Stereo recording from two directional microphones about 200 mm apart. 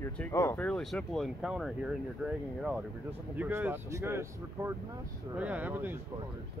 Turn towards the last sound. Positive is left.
turn(degrees=-10)  # may be behind; listen again after turning